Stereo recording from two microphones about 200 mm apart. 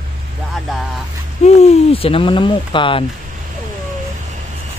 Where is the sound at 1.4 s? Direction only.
35° left (ahead or behind).